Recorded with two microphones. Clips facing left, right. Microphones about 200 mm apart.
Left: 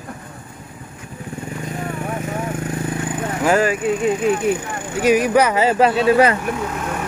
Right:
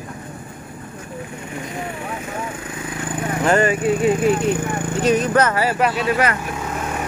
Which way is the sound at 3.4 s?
5° left (ahead or behind).